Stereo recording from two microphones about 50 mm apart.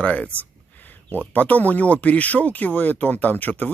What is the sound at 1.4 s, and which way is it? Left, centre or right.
Speech, left.